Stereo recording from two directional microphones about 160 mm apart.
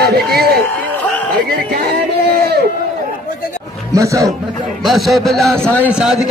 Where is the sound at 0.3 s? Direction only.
80° right.